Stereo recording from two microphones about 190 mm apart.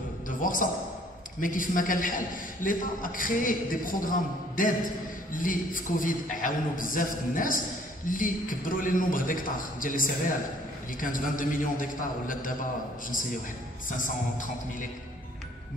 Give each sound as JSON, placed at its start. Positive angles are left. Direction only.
{"t": 0.4, "sound": "a man's voice", "side_deg": 45}
{"t": 13.8, "sound": "a man's voice", "side_deg": 45}